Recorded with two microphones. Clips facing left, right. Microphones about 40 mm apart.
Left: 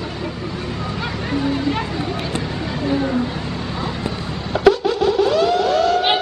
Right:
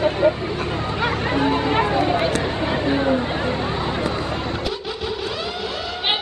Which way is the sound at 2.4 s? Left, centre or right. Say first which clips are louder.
Right 2 dB; right.